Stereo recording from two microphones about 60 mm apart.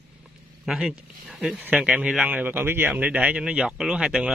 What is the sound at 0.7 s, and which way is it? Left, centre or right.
Speech, centre.